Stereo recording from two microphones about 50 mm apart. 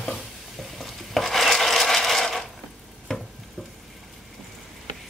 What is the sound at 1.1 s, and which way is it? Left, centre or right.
Rub, centre.